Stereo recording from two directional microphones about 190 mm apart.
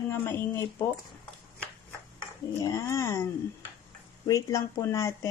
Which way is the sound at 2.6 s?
15° left (ahead or behind).